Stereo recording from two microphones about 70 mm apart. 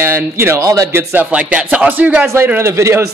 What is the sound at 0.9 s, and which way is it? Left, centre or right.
Speech, right.